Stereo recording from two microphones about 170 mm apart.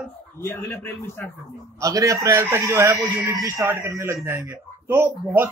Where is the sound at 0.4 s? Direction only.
15° left (ahead or behind).